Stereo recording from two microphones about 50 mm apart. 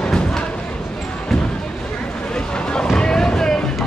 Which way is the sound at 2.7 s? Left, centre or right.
Centre.